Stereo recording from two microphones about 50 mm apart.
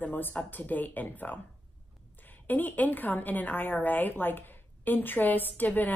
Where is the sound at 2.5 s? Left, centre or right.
Left.